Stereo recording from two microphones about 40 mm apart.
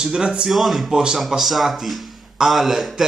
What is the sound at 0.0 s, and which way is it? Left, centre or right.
Speech, right.